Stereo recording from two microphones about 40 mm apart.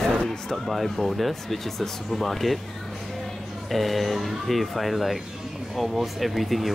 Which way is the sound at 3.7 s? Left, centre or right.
Centre.